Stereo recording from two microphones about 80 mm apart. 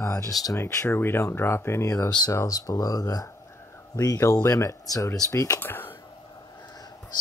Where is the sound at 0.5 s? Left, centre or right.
Left.